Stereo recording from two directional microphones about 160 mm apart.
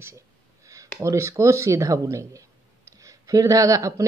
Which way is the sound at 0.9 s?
20° right (ahead or behind).